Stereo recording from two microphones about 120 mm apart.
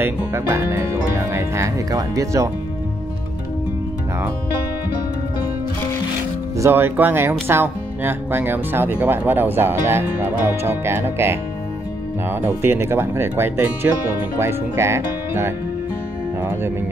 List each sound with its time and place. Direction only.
0.0 s speech: 20° right (ahead or behind)
6.5 s speech: 20° right (ahead or behind)